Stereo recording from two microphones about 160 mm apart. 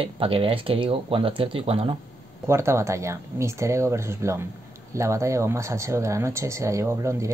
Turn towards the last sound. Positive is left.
turn(degrees=-20)  # may be behind; listen again after turning